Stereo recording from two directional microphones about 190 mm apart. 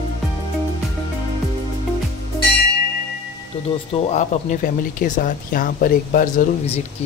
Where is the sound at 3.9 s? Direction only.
35° left (ahead or behind).